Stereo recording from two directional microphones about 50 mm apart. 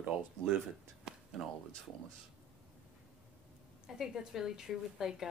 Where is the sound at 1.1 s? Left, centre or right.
Centre.